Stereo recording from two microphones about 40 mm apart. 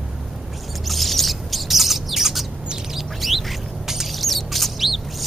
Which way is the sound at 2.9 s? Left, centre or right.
Centre.